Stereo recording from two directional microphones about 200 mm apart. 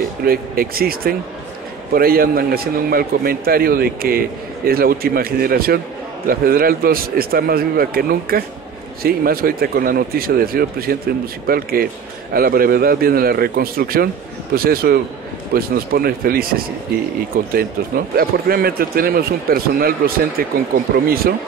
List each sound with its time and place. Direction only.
0.2 s a man's voice: 50° right (ahead or behind)